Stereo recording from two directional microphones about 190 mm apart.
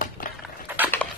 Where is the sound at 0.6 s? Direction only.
10° right (ahead or behind).